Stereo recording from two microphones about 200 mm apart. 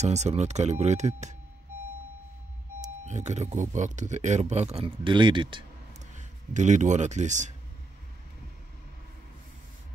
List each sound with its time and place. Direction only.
0.0 s speech: 35° right (ahead or behind)
2.8 s speech: 35° right (ahead or behind)
6.1 s speech: 35° right (ahead or behind)